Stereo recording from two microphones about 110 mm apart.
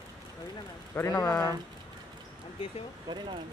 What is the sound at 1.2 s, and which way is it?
Speech, 35° left (ahead or behind).